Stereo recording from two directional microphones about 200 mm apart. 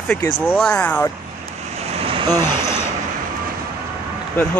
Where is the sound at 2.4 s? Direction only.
15° left (ahead or behind).